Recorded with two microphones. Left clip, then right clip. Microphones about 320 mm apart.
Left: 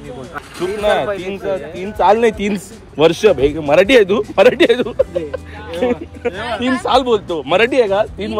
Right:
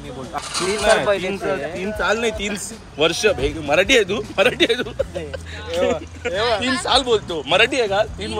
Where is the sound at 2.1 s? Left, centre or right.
Left.